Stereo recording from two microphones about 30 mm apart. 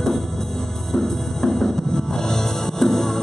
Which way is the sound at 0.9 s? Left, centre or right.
Centre.